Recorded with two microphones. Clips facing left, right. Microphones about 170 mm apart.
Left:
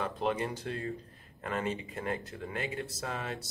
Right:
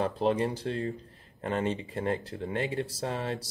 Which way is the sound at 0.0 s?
35° right (ahead or behind).